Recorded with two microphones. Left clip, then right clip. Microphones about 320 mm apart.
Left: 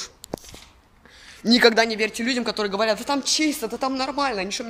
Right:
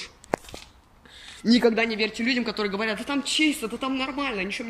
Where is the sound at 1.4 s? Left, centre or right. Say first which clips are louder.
Left 5 dB; centre.